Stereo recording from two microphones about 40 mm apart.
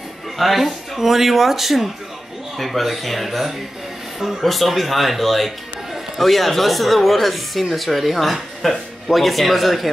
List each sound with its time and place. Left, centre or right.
0.4 s speech: centre